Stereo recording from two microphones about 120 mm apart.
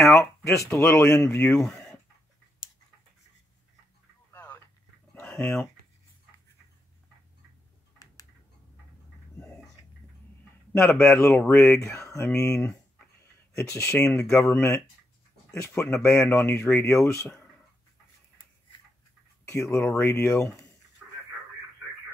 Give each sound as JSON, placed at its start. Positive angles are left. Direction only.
{"t": 0.1, "sound": "speech", "side_deg": 25}
{"t": 1.6, "sound": "a sound", "side_deg": 0}
{"t": 4.3, "sound": "telephone", "side_deg": 20}
{"t": 5.2, "sound": "speech", "side_deg": 10}
{"t": 10.7, "sound": "speech", "side_deg": 10}
{"t": 14.3, "sound": "speech", "side_deg": 25}
{"t": 19.4, "sound": "speech", "side_deg": 25}
{"t": 19.8, "sound": "speech", "side_deg": 10}
{"t": 20.1, "sound": "speech", "side_deg": 25}
{"t": 21.0, "sound": "radio", "side_deg": -5}